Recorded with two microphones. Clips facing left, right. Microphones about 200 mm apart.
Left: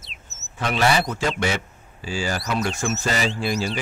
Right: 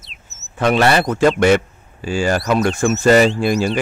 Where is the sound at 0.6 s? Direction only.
60° right (ahead or behind).